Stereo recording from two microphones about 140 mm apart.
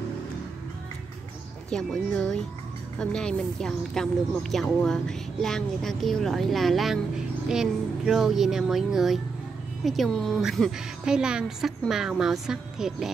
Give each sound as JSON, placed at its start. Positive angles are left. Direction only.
{"t": 1.7, "sound": "speech", "side_deg": 5}